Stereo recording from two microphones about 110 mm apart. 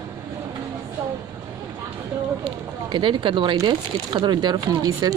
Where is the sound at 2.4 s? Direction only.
45° right (ahead or behind).